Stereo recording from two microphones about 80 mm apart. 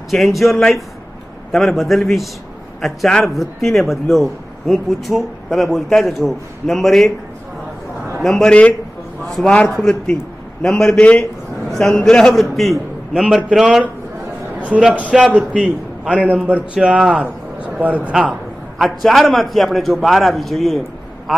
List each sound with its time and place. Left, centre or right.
0.1 s a man's voice: centre
8.2 s a man's voice: centre
9.2 s a sound: centre
9.7 s a man's voice: centre
11.7 s a man's voice: centre
14.7 s a man's voice: centre
18.1 s a sound: centre
19.0 s a man's voice: centre